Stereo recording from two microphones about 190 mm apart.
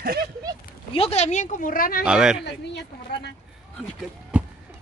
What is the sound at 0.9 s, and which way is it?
Speech, 30° left (ahead or behind).